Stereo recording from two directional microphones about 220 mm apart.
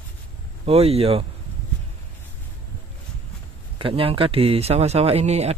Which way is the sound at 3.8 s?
25° right (ahead or behind).